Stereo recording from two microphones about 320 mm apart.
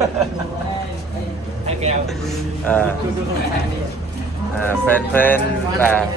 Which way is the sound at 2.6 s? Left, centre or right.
Centre.